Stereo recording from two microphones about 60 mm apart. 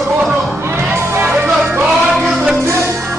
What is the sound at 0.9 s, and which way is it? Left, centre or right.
Music, right.